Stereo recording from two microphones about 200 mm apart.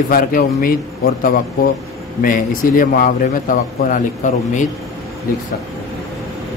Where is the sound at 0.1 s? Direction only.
45° left (ahead or behind).